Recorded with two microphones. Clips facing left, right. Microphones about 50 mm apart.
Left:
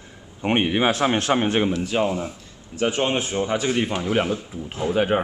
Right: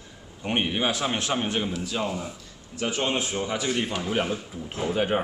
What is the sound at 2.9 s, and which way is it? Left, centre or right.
A man's voice, centre.